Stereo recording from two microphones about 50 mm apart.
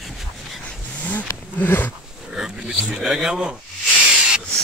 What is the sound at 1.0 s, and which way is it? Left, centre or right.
Roaring cats, left.